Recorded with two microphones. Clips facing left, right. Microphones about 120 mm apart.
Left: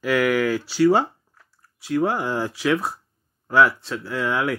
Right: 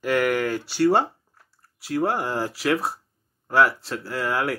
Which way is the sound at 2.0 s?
Centre (ahead or behind).